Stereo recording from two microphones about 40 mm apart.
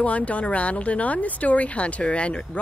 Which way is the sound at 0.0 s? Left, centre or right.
Left.